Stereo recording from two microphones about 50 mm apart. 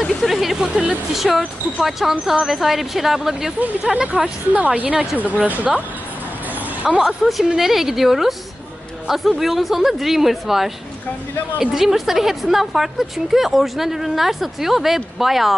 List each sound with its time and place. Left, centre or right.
0.0 s vehicle: centre
1.1 s a woman's voice: centre
4.0 s a woman's voice: centre
4.6 s speech: right
6.8 s speech: right
7.1 s a woman's voice: centre